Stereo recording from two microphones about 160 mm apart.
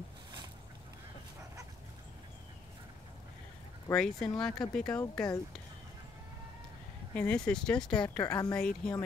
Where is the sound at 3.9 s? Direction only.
5° left (ahead or behind).